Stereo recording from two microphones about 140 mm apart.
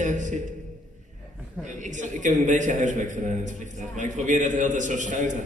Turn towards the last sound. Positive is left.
turn(degrees=-65)  # may be behind; listen again after turning